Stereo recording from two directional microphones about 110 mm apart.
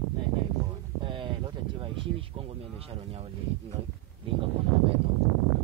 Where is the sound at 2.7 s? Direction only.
60° right (ahead or behind).